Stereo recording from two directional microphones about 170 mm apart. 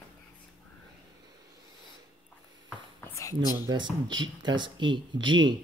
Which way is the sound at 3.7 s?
25° right (ahead or behind).